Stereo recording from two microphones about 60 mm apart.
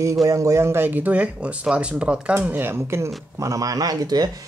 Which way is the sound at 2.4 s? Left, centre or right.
Right.